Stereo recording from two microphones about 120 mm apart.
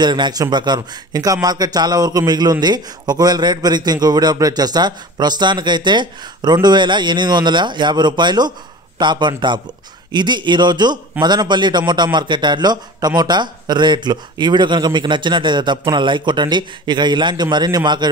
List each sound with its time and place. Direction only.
0.0 s a man's voice: 40° right (ahead or behind)